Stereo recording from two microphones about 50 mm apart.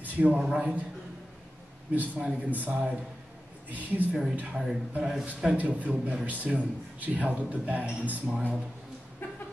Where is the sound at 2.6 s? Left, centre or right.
Right.